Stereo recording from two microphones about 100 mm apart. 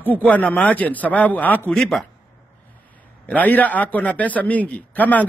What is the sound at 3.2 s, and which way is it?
Speech, 15° left (ahead or behind).